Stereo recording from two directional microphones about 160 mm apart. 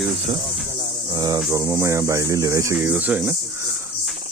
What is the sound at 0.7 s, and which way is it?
Cricket, 25° right (ahead or behind).